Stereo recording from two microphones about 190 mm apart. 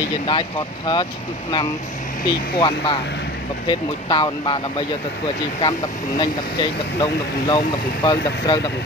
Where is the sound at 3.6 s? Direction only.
25° left (ahead or behind).